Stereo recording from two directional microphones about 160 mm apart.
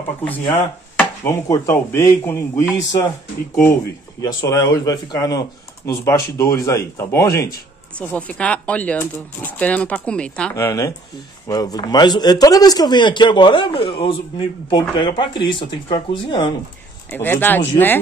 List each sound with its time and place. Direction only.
0.2 s speech: 10° left (ahead or behind)
4.2 s a man's voice: 20° left (ahead or behind); by 10.5 s 5° left (ahead or behind)
10.5 s a man's voice: 20° left (ahead or behind)
17.1 s speech: 10° left (ahead or behind)